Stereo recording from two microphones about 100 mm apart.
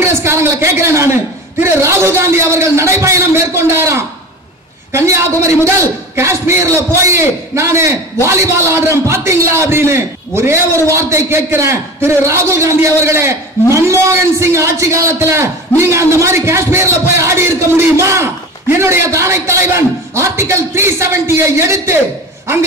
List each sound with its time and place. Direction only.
0.0 s a man's voice: 25° right (ahead or behind)